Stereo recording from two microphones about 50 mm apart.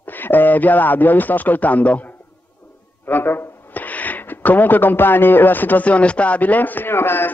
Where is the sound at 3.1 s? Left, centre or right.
Left.